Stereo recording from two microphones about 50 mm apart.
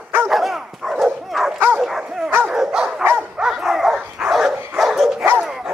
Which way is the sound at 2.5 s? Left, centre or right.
Centre.